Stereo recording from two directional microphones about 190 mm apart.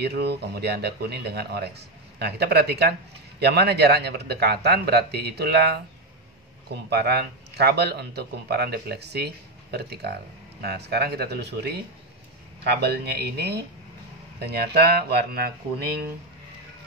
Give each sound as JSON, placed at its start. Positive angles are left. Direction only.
{"t": 0.0, "sound": "speech", "side_deg": -60}
{"t": 12.8, "sound": "speech", "side_deg": -60}